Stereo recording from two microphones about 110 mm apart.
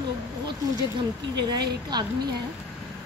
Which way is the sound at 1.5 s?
40° right (ahead or behind).